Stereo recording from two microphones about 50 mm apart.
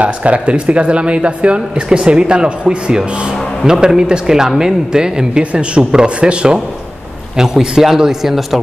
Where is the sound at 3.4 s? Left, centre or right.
Centre.